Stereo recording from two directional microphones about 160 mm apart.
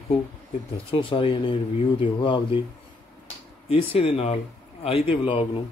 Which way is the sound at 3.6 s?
35° left (ahead or behind).